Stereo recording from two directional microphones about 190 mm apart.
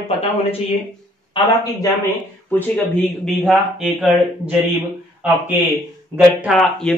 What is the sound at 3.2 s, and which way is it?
Speech, centre (ahead or behind).